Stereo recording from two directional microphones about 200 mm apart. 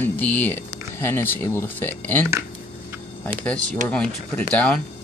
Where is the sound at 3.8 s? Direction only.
5° left (ahead or behind).